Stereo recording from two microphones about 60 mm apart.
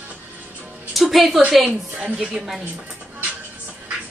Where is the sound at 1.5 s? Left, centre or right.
Centre.